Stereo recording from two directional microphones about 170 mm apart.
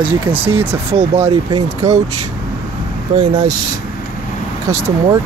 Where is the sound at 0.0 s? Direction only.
30° right (ahead or behind).